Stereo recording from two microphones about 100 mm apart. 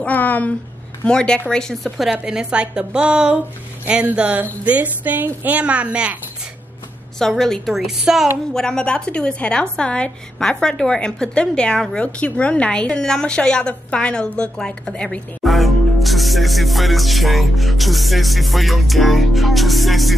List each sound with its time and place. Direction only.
0.0 s a woman's voice: 15° left (ahead or behind)
1.5 s music: 5° left (ahead or behind)
2.1 s a woman's voice: 10° right (ahead or behind)
7.2 s music: 5° left (ahead or behind)
8.5 s a woman's voice: 10° left (ahead or behind)
15.4 s music: centre (ahead or behind)